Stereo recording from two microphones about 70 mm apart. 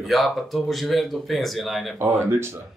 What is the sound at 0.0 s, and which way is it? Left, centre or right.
Speech, centre.